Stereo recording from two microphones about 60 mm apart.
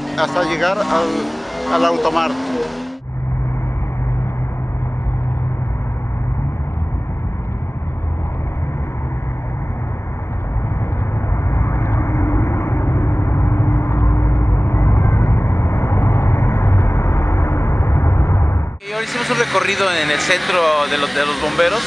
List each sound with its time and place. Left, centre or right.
0.0 s speech: centre
11.5 s vehicle: left
18.9 s speech: centre